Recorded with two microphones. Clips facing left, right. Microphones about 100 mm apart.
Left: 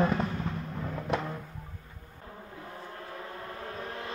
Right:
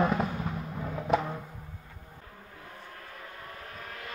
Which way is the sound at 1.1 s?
Centre (ahead or behind).